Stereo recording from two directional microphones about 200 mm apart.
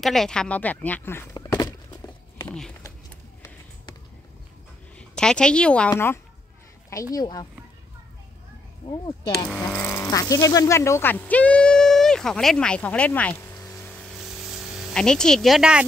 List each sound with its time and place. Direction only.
0.0 s speech: centre (ahead or behind); by 1.7 s 20° left (ahead or behind)
2.4 s a sound: 5° left (ahead or behind)
4.9 s a woman's voice: 5° left (ahead or behind)
8.9 s speech: 20° left (ahead or behind)
14.4 s speech: centre (ahead or behind)